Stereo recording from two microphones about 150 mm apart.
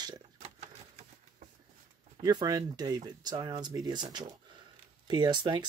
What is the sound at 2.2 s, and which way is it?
Speech, 25° right (ahead or behind).